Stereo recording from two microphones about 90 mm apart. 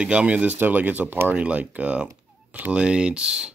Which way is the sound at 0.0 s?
10° right (ahead or behind).